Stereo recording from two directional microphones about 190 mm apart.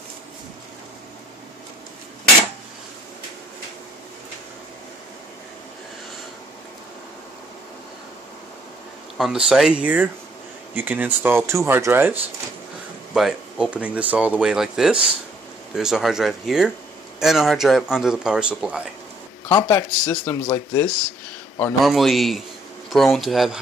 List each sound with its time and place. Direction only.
9.2 s speech: centre (ahead or behind)
19.5 s speech: 15° left (ahead or behind)
21.8 s speech: centre (ahead or behind)